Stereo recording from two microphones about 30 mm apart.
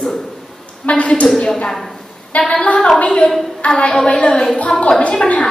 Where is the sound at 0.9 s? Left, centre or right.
Left.